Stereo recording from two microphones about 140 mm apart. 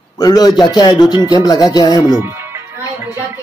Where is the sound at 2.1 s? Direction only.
20° right (ahead or behind).